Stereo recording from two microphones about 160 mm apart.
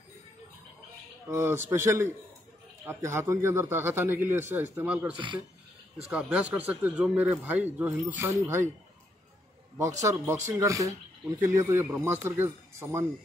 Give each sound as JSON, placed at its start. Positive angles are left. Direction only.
{"t": 1.3, "sound": "speech", "side_deg": -15}
{"t": 5.1, "sound": "speech", "side_deg": -30}
{"t": 6.3, "sound": "speech", "side_deg": -10}
{"t": 9.8, "sound": "speech", "side_deg": -20}